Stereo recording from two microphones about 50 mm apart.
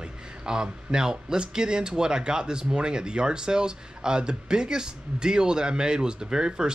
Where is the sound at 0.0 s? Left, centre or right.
Centre.